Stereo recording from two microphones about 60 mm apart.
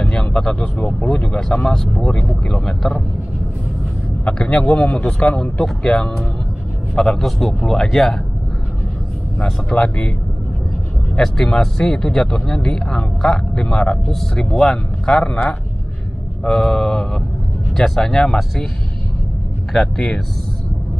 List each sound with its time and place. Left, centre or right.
0.1 s a sound: centre
1.0 s speech: centre
4.2 s a man's voice: centre
9.4 s speech: centre
11.1 s speech: centre
19.7 s a man's voice: centre